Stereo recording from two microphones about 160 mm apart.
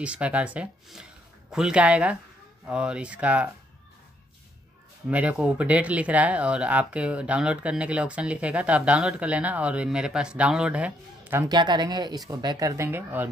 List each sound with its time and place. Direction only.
0.0 s speech: 5° right (ahead or behind)
5.0 s speech: 5° right (ahead or behind)
11.4 s speech: 25° right (ahead or behind)